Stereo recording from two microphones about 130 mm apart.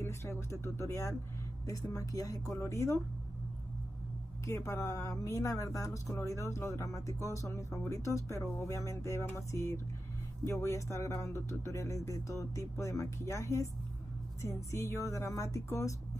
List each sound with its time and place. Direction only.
0.0 s speech: 20° left (ahead or behind)
4.5 s speech: 20° left (ahead or behind)